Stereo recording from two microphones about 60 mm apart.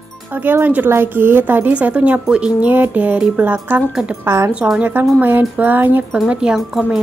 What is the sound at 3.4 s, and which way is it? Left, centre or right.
Speech, right.